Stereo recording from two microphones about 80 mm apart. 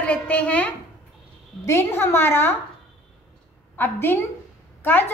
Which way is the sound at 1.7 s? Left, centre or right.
Left.